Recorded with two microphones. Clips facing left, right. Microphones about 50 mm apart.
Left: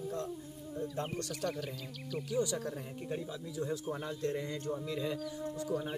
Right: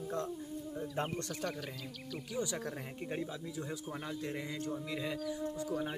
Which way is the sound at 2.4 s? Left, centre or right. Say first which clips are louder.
Left 3 dB; right.